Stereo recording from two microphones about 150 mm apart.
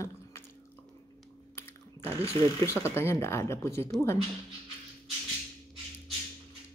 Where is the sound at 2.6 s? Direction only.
15° left (ahead or behind).